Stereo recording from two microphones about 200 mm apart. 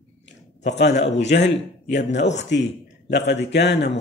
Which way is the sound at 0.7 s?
60° left (ahead or behind).